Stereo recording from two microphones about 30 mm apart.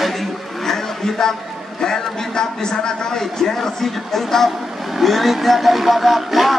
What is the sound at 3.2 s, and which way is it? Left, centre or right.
Speech, centre.